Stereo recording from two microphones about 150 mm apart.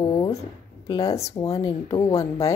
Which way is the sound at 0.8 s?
35° left (ahead or behind).